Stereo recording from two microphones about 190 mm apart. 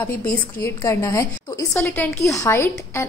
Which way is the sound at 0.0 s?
10° left (ahead or behind).